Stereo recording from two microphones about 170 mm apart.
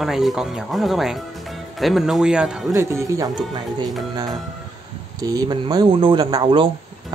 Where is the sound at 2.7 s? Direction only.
15° right (ahead or behind).